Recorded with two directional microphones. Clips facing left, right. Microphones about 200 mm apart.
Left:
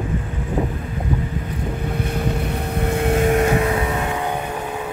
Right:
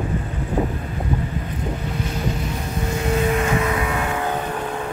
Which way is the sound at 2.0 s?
60° left (ahead or behind).